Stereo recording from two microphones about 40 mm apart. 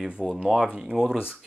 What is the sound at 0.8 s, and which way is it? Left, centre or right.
Speech, centre.